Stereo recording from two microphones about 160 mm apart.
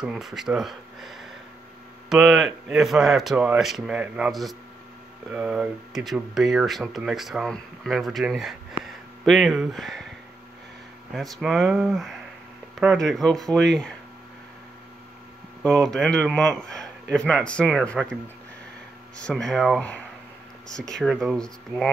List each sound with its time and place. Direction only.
0.0 s speech: centre (ahead or behind)
11.1 s speech: centre (ahead or behind)
15.6 s speech: centre (ahead or behind)
19.1 s speech: 5° left (ahead or behind)